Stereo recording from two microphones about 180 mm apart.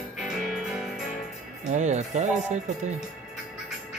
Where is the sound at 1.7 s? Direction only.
40° right (ahead or behind).